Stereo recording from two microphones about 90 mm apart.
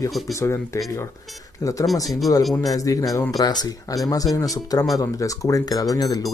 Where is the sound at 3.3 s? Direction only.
50° left (ahead or behind).